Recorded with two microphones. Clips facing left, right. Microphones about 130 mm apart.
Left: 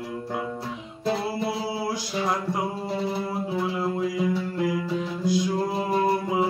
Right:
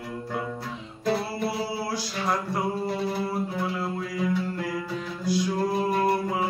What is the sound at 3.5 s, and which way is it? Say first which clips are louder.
Music: left 3 dB; 20° left (ahead or behind).